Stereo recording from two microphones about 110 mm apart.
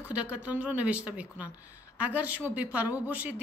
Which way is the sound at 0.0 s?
10° right (ahead or behind).